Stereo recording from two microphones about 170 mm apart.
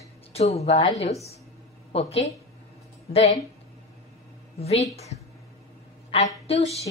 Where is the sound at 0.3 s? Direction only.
40° left (ahead or behind).